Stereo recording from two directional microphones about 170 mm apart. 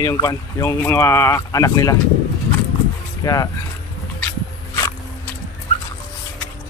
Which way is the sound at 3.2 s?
20° left (ahead or behind).